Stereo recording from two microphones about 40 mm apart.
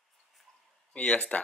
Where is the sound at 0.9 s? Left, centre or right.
Left.